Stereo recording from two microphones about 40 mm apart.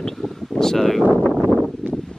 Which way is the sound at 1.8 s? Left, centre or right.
Right.